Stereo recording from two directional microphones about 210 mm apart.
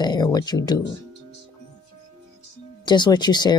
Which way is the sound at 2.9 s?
20° left (ahead or behind).